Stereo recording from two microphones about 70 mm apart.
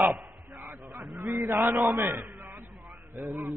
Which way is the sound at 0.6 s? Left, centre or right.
Right.